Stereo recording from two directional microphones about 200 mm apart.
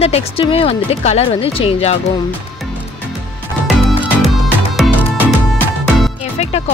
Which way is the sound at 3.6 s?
Centre (ahead or behind).